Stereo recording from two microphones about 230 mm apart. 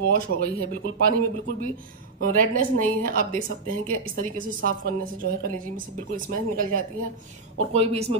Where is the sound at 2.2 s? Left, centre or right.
Right.